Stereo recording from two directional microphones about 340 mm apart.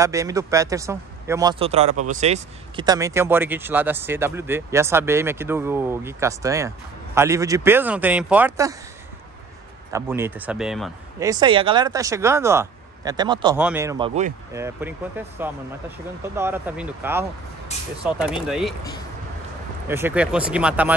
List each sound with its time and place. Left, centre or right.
0.0 s speech: centre
9.9 s speech: centre
14.5 s speech: centre
19.9 s speech: centre